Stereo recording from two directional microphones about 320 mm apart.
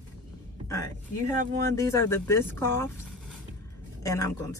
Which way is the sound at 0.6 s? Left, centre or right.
Centre.